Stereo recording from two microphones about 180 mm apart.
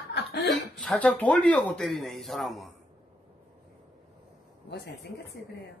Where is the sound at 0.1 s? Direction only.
70° left (ahead or behind).